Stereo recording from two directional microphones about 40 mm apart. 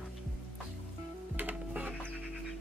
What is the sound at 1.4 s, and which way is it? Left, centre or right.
Music, right.